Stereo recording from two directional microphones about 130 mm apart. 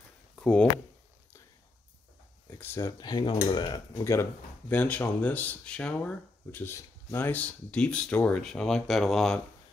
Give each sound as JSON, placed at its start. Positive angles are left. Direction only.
{"t": 0.4, "sound": "speech", "side_deg": 5}
{"t": 2.6, "sound": "speech", "side_deg": 20}
{"t": 3.0, "sound": "speech", "side_deg": 30}
{"t": 3.9, "sound": "speech", "side_deg": 20}